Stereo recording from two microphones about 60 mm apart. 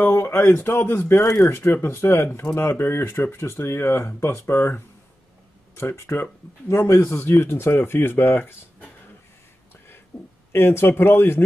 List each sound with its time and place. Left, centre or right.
0.0 s a man's voice: left
10.5 s speech: left